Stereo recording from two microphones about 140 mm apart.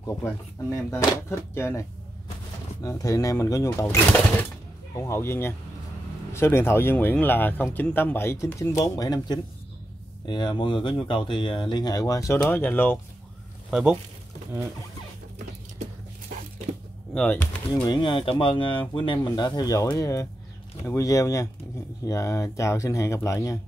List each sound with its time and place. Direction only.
0.0 s speech: 20° left (ahead or behind)
13.7 s speech: 5° right (ahead or behind)
17.1 s speech: 10° left (ahead or behind)
17.8 s speech: 35° left (ahead or behind)